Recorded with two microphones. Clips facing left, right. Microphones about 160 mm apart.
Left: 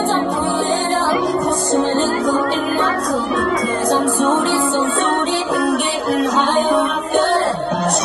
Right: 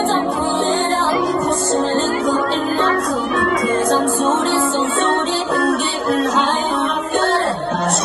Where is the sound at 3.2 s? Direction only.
35° left (ahead or behind).